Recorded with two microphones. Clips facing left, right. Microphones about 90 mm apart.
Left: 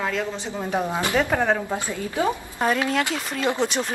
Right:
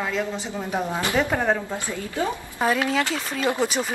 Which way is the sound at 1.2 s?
Centre (ahead or behind).